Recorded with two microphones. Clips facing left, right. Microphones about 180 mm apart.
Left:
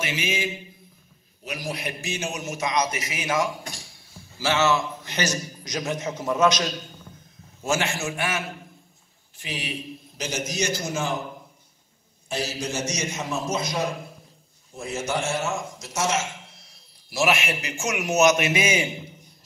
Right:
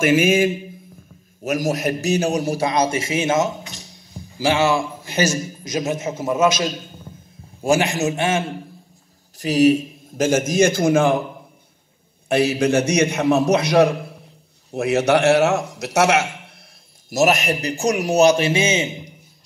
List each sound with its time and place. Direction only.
0.0 s a man's voice: 50° right (ahead or behind); by 3.6 s 25° right (ahead or behind)
3.7 s a sound: 20° right (ahead or behind)
5.3 s a man's voice: 25° right (ahead or behind)
6.1 s a man's voice: 5° right (ahead or behind)
7.6 s a man's voice: 15° right (ahead or behind)
9.4 s a man's voice: 40° right (ahead or behind)
12.3 s a man's voice: 60° right (ahead or behind); by 19.1 s 20° right (ahead or behind)